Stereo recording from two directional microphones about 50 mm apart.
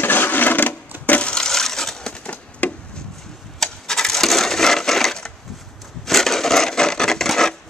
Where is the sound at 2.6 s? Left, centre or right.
Left.